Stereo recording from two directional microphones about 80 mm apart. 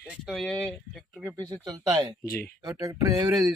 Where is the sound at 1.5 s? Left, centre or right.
Right.